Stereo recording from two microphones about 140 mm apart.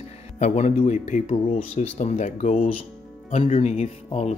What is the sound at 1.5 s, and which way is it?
A man's voice, 50° left (ahead or behind).